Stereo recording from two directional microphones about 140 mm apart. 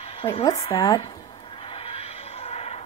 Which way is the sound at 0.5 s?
45° left (ahead or behind).